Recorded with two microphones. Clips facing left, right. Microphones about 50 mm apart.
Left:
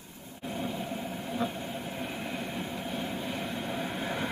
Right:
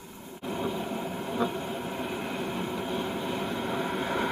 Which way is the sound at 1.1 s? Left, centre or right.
Right.